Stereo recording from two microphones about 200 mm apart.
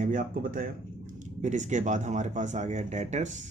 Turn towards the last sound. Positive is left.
turn(degrees=-35)  # may be behind; listen again after turning